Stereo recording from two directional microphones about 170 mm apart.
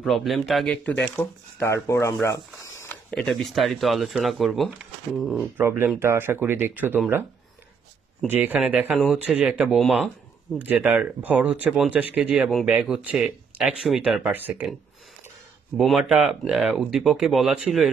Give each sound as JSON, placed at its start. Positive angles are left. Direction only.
{"t": 0.0, "sound": "speech", "side_deg": 0}
{"t": 5.6, "sound": "speech", "side_deg": -10}
{"t": 8.3, "sound": "speech", "side_deg": -10}
{"t": 10.6, "sound": "speech", "side_deg": -10}
{"t": 15.8, "sound": "speech", "side_deg": 0}